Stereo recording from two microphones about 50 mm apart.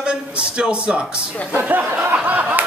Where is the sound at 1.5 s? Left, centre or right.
Right.